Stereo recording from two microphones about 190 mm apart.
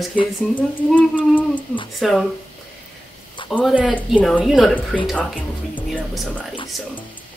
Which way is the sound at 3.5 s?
5° right (ahead or behind).